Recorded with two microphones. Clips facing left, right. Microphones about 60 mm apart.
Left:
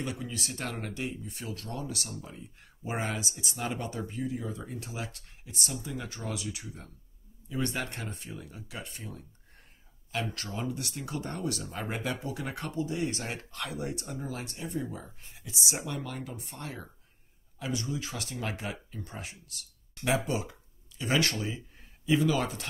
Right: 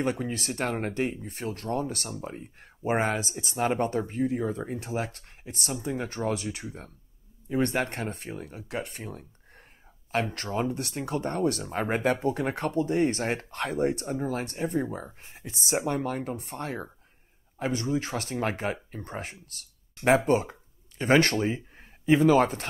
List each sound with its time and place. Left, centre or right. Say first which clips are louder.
0.0 s speech: right 7 dB; right
10.3 s speech: right 6 dB; right